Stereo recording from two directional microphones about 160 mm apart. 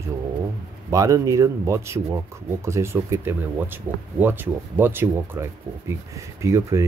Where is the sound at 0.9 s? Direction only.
20° right (ahead or behind).